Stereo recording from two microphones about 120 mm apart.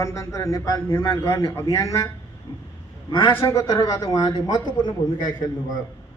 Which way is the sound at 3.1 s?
40° left (ahead or behind).